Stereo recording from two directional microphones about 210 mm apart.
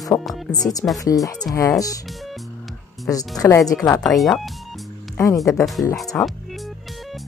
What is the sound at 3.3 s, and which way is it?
Speech, 15° left (ahead or behind).